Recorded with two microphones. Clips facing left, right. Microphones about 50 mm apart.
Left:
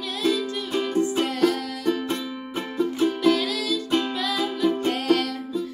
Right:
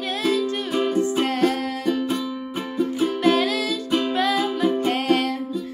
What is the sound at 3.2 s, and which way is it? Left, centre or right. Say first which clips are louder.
Music: right 5 dB; right.